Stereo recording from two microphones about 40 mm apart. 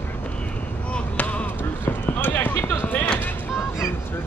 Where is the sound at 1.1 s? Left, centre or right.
Left.